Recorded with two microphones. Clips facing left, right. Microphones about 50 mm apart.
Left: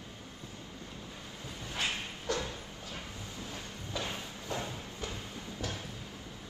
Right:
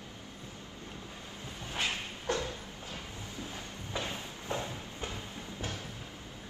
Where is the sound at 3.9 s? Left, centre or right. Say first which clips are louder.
Even; right.